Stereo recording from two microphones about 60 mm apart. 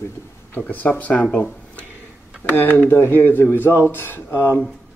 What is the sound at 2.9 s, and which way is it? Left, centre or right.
Speech, left.